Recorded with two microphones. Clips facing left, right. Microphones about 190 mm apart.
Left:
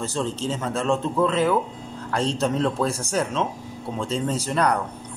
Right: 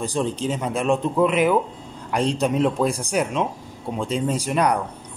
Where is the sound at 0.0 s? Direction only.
15° right (ahead or behind).